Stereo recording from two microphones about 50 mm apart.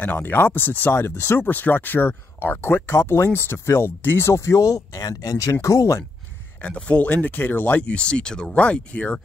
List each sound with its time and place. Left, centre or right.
0.0 s speech: left
0.9 s speech: left
1.5 s speech: left
2.9 s speech: left
3.3 s speech: left
4.0 s speech: left
4.4 s speech: left
6.6 s speech: left
7.9 s speech: centre